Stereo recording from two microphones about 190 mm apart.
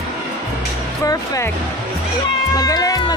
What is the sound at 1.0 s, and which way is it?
Speech, 15° left (ahead or behind).